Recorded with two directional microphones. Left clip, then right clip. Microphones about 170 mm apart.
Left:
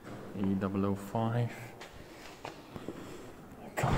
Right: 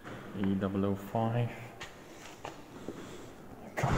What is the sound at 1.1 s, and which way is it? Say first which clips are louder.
Speech: right 1 dB; centre (ahead or behind).